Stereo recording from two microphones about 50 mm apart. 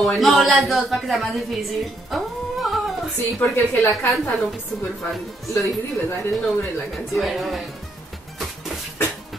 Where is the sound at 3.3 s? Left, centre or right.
Left.